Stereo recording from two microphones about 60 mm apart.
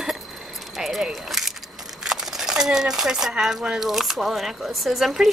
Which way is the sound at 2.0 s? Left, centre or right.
Centre.